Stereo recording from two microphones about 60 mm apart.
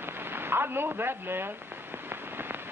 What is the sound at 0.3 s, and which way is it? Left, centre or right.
A woman's voice, right.